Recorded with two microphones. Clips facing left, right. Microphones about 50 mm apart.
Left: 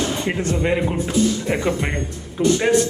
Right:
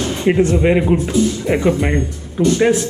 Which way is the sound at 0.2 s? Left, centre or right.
Centre.